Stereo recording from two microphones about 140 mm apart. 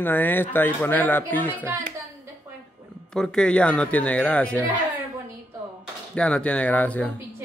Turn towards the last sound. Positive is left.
turn(degrees=10)  # may be behind; listen again after turning